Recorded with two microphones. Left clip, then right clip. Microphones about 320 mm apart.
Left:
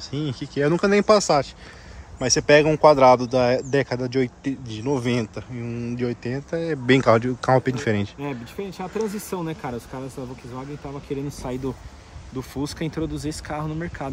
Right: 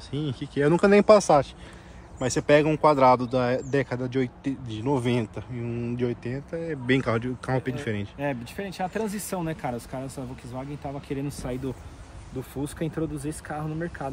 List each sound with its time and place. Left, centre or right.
0.0 s speech: centre
8.2 s speech: centre
11.1 s speech: centre
12.6 s speech: left